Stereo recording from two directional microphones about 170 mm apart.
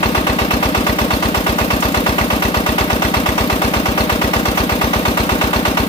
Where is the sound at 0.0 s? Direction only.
30° left (ahead or behind).